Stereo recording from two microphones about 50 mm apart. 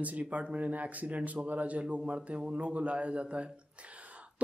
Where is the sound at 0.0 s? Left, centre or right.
Right.